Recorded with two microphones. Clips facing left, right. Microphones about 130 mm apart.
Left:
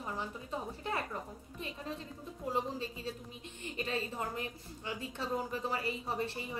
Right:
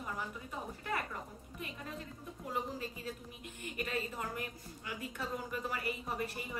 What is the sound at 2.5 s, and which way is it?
A woman's voice, 25° left (ahead or behind).